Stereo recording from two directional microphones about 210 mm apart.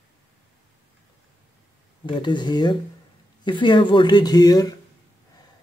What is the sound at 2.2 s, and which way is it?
Speech, 20° left (ahead or behind).